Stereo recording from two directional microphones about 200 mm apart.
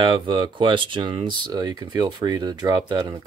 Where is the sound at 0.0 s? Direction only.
25° right (ahead or behind).